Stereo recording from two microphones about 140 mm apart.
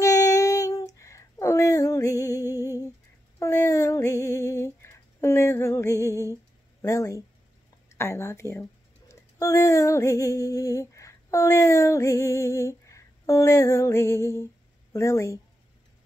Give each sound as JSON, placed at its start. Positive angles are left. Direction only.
{"t": 0.0, "sound": "child singing", "side_deg": 25}
{"t": 0.9, "sound": "a sound", "side_deg": 20}
{"t": 9.1, "sound": "female singing", "side_deg": 20}